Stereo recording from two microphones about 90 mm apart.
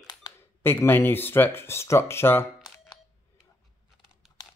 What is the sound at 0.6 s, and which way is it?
Speech, 25° left (ahead or behind).